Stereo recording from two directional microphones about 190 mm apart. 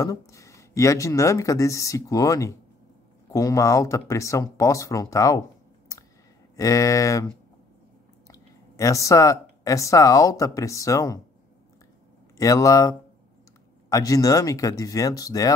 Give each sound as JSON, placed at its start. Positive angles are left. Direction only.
{"t": 0.0, "sound": "speech", "side_deg": 15}
{"t": 6.5, "sound": "speech", "side_deg": 20}
{"t": 12.4, "sound": "speech", "side_deg": 15}